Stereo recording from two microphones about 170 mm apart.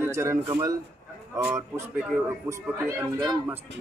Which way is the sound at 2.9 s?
15° right (ahead or behind).